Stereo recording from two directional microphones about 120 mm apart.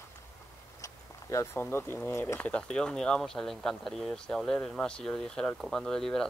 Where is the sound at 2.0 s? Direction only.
20° left (ahead or behind).